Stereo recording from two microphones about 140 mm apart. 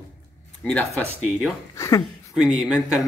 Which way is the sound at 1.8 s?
20° left (ahead or behind).